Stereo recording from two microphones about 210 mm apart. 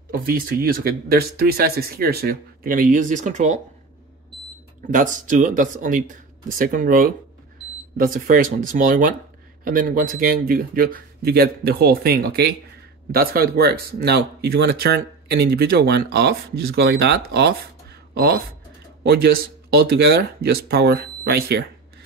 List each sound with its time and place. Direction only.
0.1 s speech: 45° right (ahead or behind)
4.9 s speech: 40° right (ahead or behind)